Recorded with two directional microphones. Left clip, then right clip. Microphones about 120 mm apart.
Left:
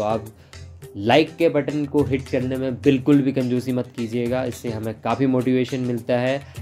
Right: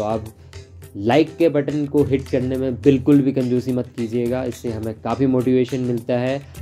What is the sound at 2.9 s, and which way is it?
Speech, 15° right (ahead or behind).